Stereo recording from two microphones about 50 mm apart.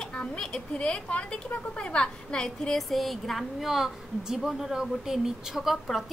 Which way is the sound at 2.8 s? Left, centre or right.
Centre.